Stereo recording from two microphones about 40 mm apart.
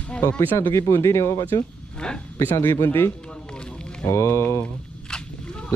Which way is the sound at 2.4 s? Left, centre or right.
Left.